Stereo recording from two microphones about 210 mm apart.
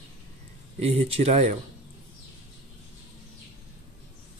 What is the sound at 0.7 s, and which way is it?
Speech, 30° right (ahead or behind).